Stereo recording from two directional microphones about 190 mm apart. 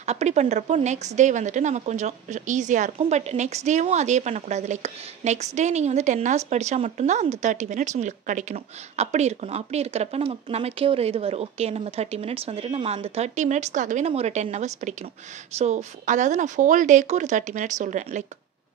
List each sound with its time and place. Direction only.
0.0 s a woman's voice: 35° right (ahead or behind)